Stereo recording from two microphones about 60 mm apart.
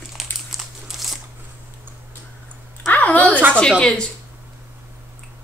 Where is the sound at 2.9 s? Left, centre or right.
Left.